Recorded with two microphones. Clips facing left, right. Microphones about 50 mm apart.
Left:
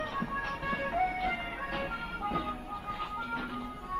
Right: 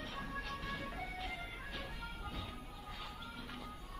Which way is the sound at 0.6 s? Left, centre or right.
Left.